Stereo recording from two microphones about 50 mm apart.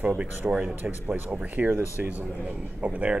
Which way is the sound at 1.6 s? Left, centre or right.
Right.